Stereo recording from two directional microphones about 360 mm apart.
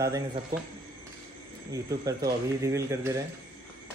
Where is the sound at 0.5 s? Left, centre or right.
Right.